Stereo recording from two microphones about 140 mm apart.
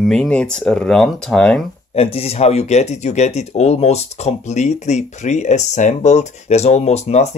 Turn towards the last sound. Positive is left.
turn(degrees=50)  # may be behind; listen again after turning